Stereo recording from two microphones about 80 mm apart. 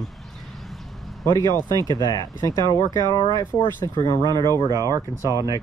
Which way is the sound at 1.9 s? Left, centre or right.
Left.